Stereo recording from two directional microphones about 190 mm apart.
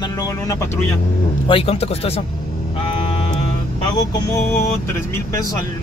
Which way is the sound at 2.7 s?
30° left (ahead or behind).